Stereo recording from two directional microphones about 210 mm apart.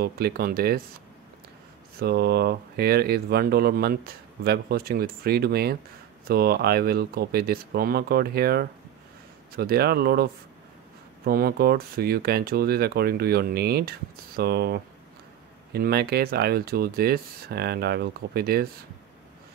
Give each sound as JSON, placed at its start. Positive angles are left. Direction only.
{"t": 0.0, "sound": "speech", "side_deg": -45}
{"t": 2.0, "sound": "speech", "side_deg": -50}